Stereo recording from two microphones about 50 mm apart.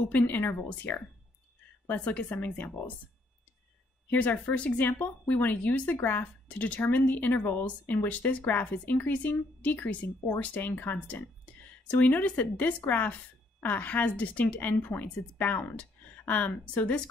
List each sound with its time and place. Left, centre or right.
0.3 s speech: left
4.1 s speech: left